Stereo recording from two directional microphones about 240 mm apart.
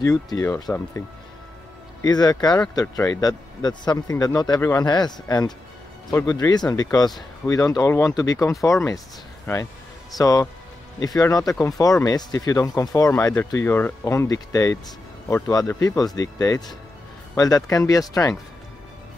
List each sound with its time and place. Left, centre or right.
0.0 s speech: centre
10.1 s speech: centre